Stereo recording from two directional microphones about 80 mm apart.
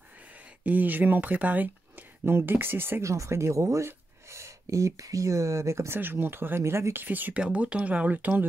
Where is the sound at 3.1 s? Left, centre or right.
Right.